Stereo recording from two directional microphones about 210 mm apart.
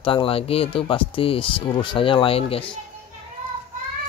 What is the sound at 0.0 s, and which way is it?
Speech, 25° left (ahead or behind).